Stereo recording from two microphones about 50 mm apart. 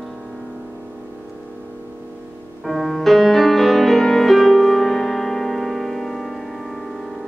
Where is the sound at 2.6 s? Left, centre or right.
Centre.